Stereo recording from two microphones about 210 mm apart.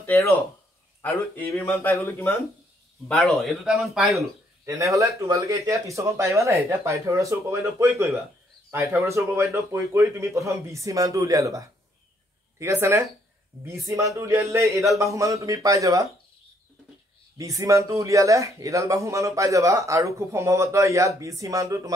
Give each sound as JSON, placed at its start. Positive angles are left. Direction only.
{"t": 0.0, "sound": "speech", "side_deg": 10}
{"t": 4.6, "sound": "speech", "side_deg": -15}
{"t": 17.4, "sound": "speech", "side_deg": -15}